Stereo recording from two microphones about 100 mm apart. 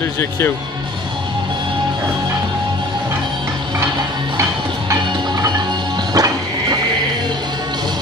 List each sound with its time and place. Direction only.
6.1 s music: 40° right (ahead or behind)